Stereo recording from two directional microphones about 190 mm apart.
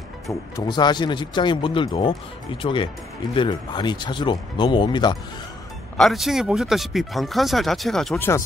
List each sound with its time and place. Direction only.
0.3 s speech: 20° left (ahead or behind)
5.9 s speech: centre (ahead or behind)